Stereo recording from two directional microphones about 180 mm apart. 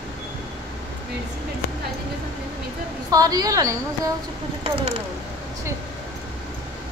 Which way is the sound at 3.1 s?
20° right (ahead or behind).